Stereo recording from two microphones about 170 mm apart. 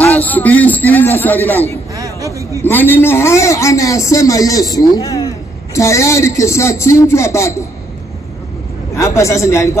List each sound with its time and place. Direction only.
0.0 s a man's voice: 10° left (ahead or behind)
2.0 s a sound: 20° right (ahead or behind)
2.6 s a man's voice: 10° left (ahead or behind)
8.9 s a man's voice: 15° left (ahead or behind)